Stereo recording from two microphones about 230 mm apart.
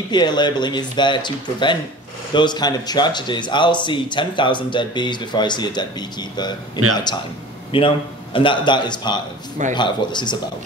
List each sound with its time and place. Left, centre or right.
0.1 s speech: centre
7.7 s speech: left